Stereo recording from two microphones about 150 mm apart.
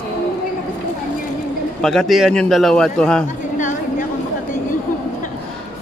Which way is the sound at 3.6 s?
55° left (ahead or behind).